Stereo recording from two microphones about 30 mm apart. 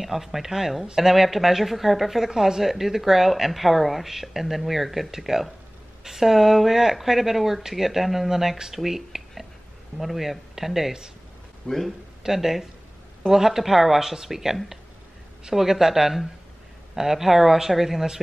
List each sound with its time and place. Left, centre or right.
0.0 s a woman's voice: centre
2.2 s a woman's voice: centre
11.6 s speech: centre
12.2 s speech: centre